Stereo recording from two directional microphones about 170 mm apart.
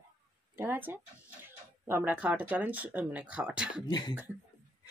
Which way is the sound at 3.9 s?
25° left (ahead or behind).